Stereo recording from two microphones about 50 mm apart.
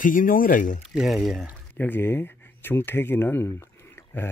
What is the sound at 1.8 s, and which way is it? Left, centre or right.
Speech, left.